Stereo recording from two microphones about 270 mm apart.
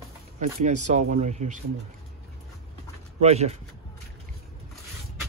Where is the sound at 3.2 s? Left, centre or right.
Right.